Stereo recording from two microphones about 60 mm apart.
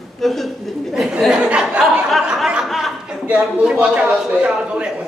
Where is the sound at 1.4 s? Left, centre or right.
Right.